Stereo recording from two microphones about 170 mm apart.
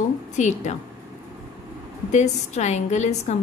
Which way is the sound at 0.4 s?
45° left (ahead or behind).